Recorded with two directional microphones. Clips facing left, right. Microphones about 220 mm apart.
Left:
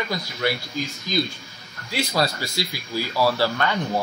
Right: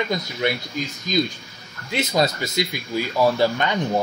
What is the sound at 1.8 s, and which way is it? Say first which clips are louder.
Speech: right 3 dB; 20° right (ahead or behind).